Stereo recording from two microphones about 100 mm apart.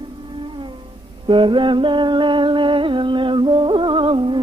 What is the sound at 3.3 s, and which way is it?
Music, 55° right (ahead or behind).